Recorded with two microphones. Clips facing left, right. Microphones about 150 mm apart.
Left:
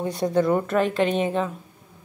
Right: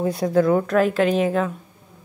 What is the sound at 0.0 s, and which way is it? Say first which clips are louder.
A woman's voice: right 3 dB; centre (ahead or behind).